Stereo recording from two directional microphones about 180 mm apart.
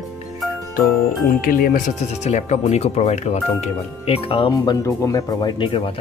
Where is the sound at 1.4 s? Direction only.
50° left (ahead or behind).